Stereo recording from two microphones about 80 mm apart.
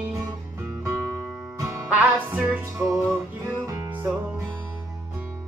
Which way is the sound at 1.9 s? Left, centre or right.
Centre.